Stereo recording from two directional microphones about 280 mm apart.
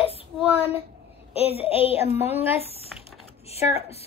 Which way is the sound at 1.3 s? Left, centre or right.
Left.